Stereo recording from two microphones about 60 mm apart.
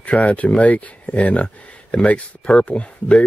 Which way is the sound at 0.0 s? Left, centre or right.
Left.